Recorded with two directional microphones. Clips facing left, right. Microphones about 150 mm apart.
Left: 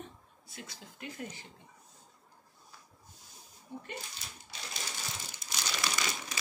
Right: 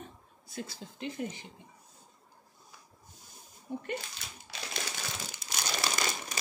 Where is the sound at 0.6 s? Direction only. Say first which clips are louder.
Right 7 dB; 30° right (ahead or behind).